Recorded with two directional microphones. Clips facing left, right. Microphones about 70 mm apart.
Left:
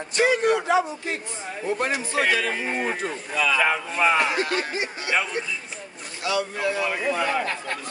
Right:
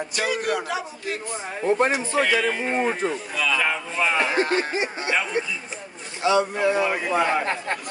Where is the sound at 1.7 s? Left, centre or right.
Right.